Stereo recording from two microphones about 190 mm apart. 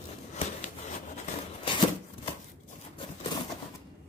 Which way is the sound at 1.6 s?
25° left (ahead or behind).